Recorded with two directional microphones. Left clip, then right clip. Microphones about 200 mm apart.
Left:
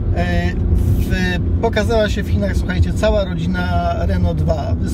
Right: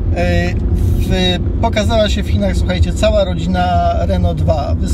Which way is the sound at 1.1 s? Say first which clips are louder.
Right 6 dB; 20° right (ahead or behind).